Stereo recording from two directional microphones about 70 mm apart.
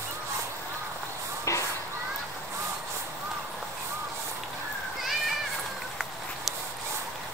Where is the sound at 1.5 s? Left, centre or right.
Left.